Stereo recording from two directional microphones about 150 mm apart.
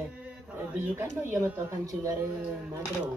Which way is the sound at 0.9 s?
15° right (ahead or behind).